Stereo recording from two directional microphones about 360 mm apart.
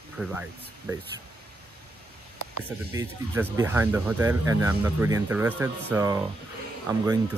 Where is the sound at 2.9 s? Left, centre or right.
Centre.